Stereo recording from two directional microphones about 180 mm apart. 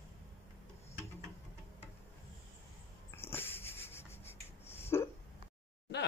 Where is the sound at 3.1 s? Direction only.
15° left (ahead or behind).